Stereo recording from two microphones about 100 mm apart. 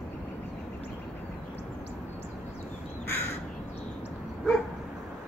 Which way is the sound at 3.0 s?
20° left (ahead or behind).